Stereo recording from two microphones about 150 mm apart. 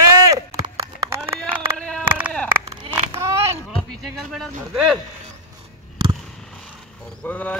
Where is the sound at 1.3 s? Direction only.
10° left (ahead or behind).